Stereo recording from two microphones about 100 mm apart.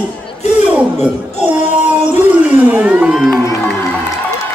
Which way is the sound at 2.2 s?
15° right (ahead or behind).